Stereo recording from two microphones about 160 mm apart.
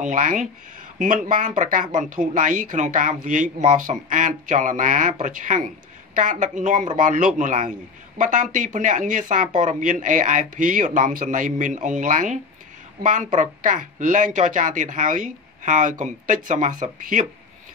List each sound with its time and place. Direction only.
0.0 s speech: 55° right (ahead or behind)